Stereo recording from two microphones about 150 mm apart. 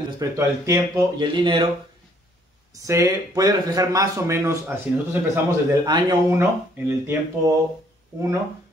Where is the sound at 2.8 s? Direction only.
20° right (ahead or behind).